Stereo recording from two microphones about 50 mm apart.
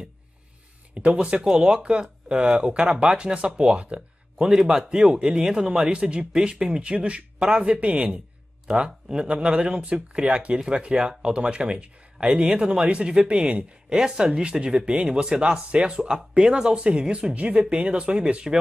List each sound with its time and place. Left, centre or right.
0.9 s speech: centre